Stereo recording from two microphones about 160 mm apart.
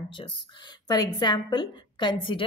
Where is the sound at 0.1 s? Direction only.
30° left (ahead or behind).